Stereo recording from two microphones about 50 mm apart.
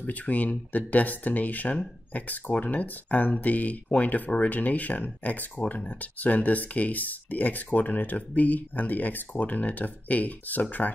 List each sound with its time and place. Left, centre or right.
0.0 s speech: left